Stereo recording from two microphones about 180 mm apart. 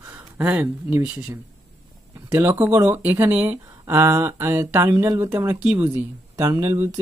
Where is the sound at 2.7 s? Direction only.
15° right (ahead or behind).